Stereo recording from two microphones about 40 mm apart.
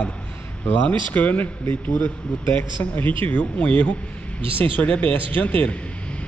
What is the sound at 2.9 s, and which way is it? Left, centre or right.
A man's voice, left.